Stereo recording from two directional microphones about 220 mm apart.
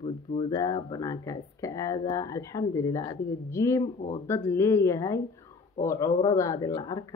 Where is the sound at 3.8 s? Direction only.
35° left (ahead or behind).